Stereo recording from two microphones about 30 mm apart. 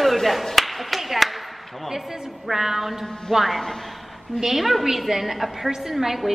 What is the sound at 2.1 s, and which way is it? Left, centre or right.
Speech, centre.